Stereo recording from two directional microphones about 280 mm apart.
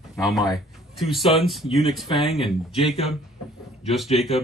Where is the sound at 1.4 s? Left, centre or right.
Centre.